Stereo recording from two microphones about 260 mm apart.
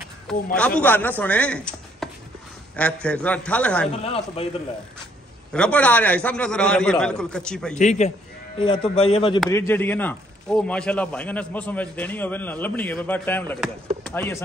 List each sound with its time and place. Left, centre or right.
0.6 s a man's voice: centre
4.0 s speech: left
5.5 s a man's voice: centre
7.7 s speech: left
9.5 s a man's voice: centre